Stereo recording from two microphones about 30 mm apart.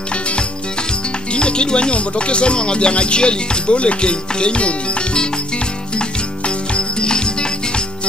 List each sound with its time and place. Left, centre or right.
1.3 s speech: left
5.9 s music: left